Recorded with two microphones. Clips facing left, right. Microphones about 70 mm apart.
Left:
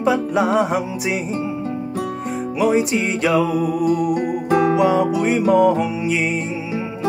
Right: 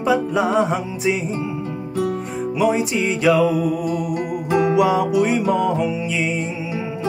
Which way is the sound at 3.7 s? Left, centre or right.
Left.